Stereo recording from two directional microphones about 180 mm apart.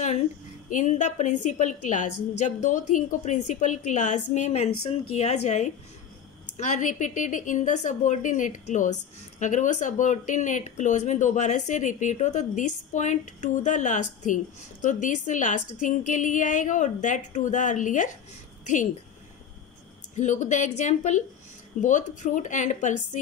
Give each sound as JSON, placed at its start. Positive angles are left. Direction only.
{"t": 0.7, "sound": "a woman's voice", "side_deg": 45}
{"t": 20.2, "sound": "a woman's voice", "side_deg": 40}